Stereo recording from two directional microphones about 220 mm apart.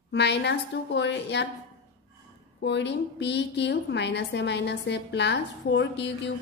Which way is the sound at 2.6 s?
50° left (ahead or behind).